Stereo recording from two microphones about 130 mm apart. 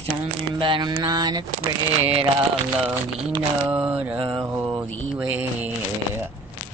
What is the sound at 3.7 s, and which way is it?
Mantra, 10° right (ahead or behind).